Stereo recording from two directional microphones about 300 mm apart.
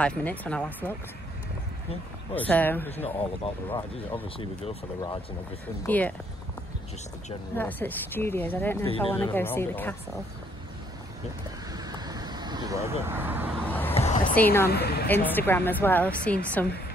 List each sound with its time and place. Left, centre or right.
0.0 s speech: centre
2.3 s speech: centre
3.2 s speech: centre
5.9 s speech: centre
7.5 s speech: centre
8.8 s speech: centre
9.1 s speech: centre
11.7 s vehicle: centre
13.7 s vehicle: centre
13.9 s a sound: left
14.3 s speech: centre
14.7 s a woman's voice: left
15.2 s speech: centre